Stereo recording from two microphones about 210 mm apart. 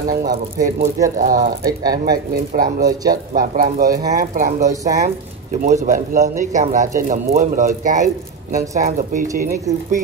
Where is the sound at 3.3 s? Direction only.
40° right (ahead or behind).